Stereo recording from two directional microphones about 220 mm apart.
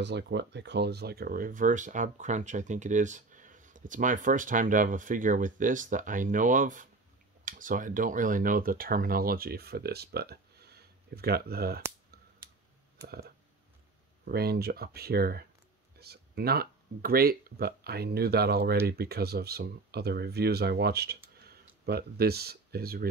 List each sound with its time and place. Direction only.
0.0 s speech: 50° right (ahead or behind)
14.2 s speech: 45° right (ahead or behind)